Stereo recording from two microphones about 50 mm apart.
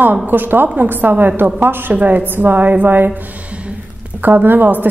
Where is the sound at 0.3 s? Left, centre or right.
Right.